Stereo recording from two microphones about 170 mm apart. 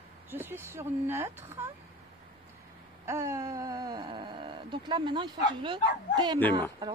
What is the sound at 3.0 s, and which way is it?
Speech, 15° right (ahead or behind).